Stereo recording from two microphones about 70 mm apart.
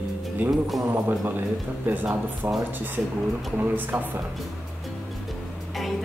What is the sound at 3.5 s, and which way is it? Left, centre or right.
Speech, right.